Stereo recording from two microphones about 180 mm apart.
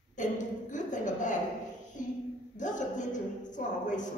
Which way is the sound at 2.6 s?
45° left (ahead or behind).